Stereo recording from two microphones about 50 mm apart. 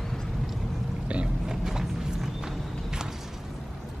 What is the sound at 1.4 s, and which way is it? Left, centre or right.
Walk, centre.